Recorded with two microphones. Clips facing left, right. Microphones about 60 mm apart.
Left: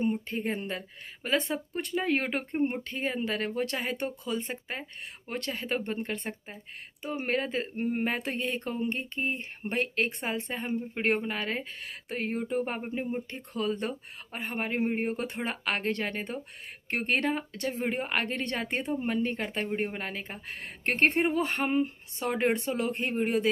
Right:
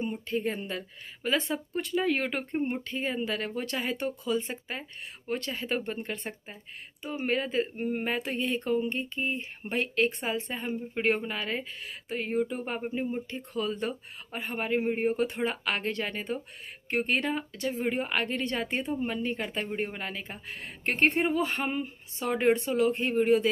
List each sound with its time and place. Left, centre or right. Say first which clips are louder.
0.3 s speech: right 1 dB; left
10.7 s speech: right 1 dB; left
19.7 s speech: left 1 dB; left